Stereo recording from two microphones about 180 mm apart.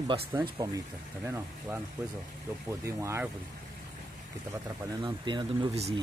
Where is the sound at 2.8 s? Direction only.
15° right (ahead or behind).